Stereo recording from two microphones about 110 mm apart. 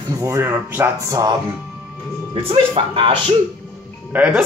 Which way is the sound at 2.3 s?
60° right (ahead or behind).